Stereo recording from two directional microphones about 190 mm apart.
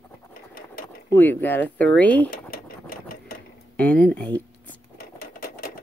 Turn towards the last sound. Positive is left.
turn(degrees=50)  # may be behind; listen again after turning